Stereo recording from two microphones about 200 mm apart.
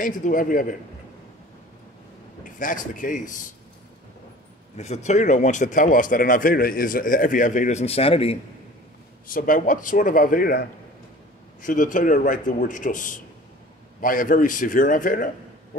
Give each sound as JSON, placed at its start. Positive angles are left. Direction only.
{"t": 0.0, "sound": "speech", "side_deg": 40}
{"t": 2.4, "sound": "speech", "side_deg": 40}
{"t": 4.7, "sound": "speech", "side_deg": 35}
{"t": 9.3, "sound": "speech", "side_deg": 40}